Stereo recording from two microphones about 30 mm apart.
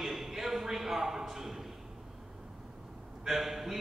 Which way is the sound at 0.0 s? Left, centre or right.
Centre.